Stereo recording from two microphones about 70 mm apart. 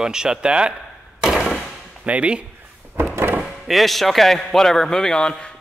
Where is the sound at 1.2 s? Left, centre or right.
Centre.